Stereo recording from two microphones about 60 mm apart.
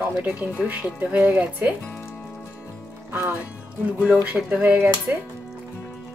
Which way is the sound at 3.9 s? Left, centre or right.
Right.